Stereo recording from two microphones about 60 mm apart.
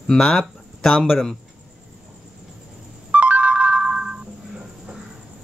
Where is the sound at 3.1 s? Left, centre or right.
Right.